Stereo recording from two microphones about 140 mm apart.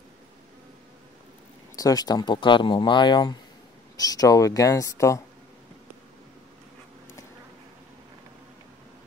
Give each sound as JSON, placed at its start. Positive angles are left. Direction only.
{"t": 1.8, "sound": "speech", "side_deg": 25}